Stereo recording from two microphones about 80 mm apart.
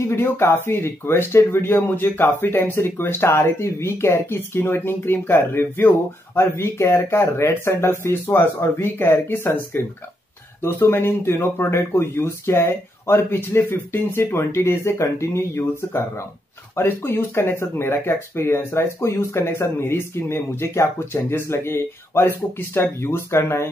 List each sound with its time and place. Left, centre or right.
0.1 s speech: left